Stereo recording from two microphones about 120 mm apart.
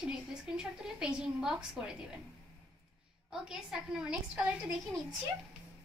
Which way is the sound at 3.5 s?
5° right (ahead or behind).